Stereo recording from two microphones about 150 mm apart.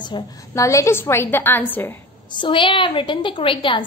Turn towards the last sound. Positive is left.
turn(degrees=35)  # may be behind; listen again after turning